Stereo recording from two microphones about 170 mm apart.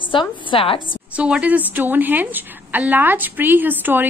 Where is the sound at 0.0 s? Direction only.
30° left (ahead or behind).